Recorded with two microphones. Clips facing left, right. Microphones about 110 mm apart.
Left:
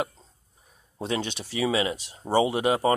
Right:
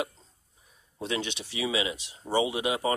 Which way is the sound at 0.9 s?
35° left (ahead or behind).